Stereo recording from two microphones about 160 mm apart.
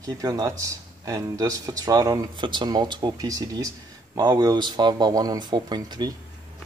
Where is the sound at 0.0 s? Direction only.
20° right (ahead or behind).